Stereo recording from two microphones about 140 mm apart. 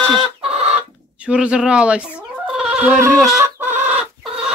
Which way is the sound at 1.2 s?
5° right (ahead or behind).